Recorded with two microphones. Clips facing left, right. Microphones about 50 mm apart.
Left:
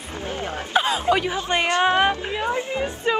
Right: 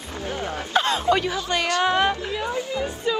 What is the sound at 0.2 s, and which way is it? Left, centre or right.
Speech, left.